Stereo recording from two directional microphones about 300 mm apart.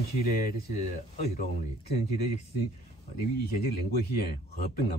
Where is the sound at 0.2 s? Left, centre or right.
Left.